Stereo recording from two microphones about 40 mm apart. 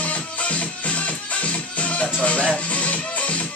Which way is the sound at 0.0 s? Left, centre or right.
Left.